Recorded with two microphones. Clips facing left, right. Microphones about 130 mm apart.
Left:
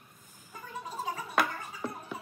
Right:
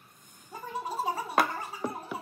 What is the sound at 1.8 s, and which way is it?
Music, 15° right (ahead or behind).